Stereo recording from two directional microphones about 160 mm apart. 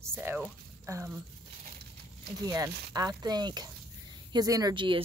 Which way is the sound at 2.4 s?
20° right (ahead or behind).